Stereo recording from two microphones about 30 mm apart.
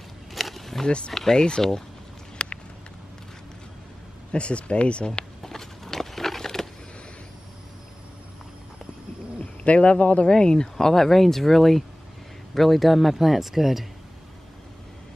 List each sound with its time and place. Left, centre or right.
0.3 s a sound: centre
0.8 s speech: left
2.4 s a sound: left
4.3 s speech: left
5.4 s biting: centre
9.8 s speech: left
10.2 s speech: left
10.9 s a man's voice: centre